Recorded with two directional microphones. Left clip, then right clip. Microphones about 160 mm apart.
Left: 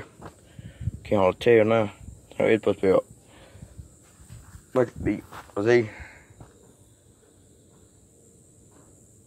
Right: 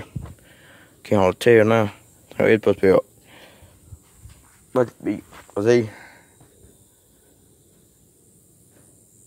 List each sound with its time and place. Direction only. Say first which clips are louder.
1.0 s speech: right 4 dB; 45° right (ahead or behind)
4.7 s speech: right 3 dB; 30° right (ahead or behind)
5.5 s speech: right 3 dB; 60° right (ahead or behind)